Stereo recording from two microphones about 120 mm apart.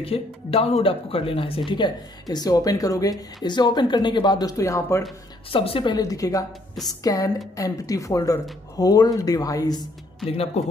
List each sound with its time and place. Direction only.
0.0 s speech: 55° left (ahead or behind)
1.7 s speech: 40° left (ahead or behind)
5.5 s speech: 50° left (ahead or behind)
5.9 s a woman's voice: 30° left (ahead or behind)
10.2 s speech: 55° left (ahead or behind)